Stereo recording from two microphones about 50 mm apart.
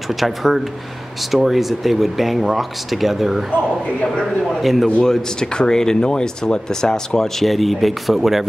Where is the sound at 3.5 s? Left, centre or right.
Left.